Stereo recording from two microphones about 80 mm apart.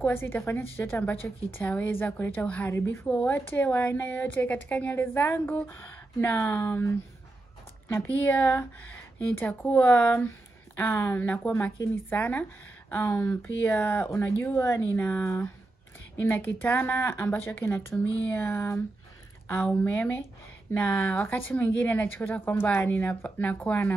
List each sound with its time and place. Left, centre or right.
0.0 s a woman's voice: left
2.7 s a woman's voice: left
7.9 s a woman's voice: left
10.8 s a woman's voice: left
12.9 s speech: left
13.3 s speech: left
15.0 s a woman's voice: left
15.2 s a woman's voice: left